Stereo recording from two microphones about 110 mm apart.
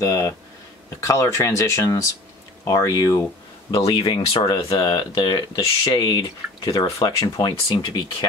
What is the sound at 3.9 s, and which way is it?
Speech, 40° left (ahead or behind).